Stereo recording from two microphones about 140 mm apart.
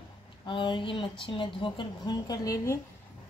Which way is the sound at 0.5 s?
35° left (ahead or behind).